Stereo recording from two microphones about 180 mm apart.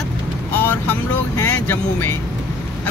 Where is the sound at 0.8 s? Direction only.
15° left (ahead or behind).